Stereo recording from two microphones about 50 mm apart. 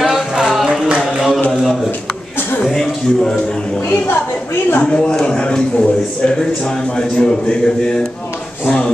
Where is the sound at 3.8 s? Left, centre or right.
Left.